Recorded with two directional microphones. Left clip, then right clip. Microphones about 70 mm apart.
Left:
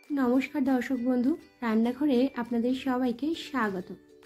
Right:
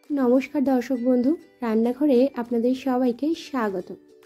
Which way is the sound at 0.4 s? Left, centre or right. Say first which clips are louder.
Right 5 dB; right.